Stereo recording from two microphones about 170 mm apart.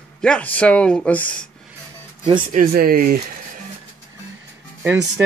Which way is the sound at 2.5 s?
55° right (ahead or behind).